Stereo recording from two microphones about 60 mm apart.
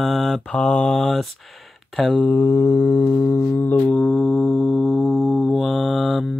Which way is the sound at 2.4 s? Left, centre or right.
Left.